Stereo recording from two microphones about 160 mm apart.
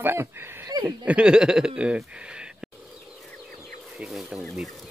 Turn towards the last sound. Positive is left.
turn(degrees=0)  # may be behind; listen again after turning